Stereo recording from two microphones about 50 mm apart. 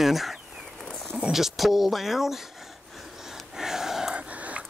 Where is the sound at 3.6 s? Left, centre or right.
Centre.